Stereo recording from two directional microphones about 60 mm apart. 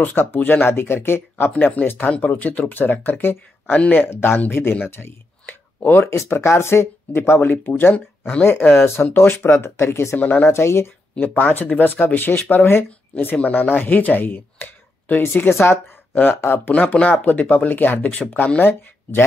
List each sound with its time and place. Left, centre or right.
0.0 s speech: left
1.5 s speech: left
5.9 s speech: left
10.1 s speech: left
10.5 s speech: left
11.2 s speech: left